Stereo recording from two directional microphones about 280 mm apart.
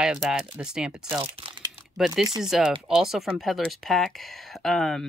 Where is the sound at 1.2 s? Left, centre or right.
Centre.